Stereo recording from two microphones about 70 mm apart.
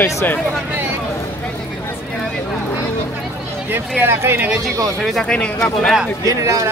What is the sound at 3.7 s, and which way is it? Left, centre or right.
Speech, right.